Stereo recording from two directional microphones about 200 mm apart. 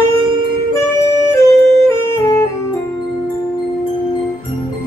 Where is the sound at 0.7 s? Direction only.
10° left (ahead or behind).